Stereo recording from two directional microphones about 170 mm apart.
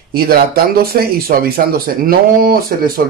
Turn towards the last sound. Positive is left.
turn(degrees=-60)  # may be behind; listen again after turning